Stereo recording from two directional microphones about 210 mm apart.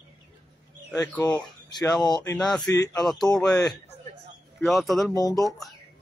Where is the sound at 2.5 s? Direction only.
5° left (ahead or behind).